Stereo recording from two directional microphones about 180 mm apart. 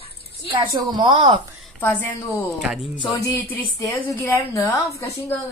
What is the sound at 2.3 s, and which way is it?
Speech, 5° right (ahead or behind).